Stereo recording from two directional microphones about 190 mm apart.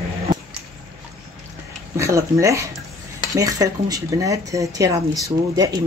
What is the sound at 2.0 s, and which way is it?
Speech, 15° right (ahead or behind).